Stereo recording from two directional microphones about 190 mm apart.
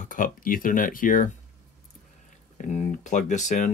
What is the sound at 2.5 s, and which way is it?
Speech, 40° left (ahead or behind).